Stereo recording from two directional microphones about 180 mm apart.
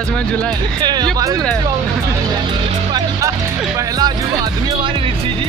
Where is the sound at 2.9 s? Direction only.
20° right (ahead or behind).